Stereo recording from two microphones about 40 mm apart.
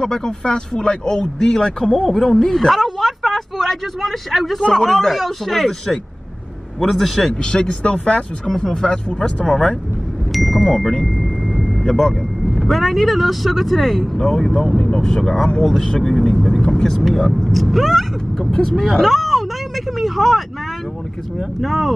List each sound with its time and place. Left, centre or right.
0.0 s speech: centre
7.6 s speech: left
10.3 s speech: centre
15.2 s speech: centre
16.9 s speech: centre
20.0 s vehicle: centre
21.5 s speech: centre